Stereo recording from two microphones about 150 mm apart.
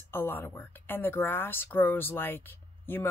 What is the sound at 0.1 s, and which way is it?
A woman's voice, 15° left (ahead or behind).